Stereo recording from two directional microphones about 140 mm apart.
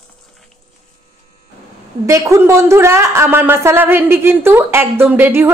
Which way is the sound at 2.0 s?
20° right (ahead or behind).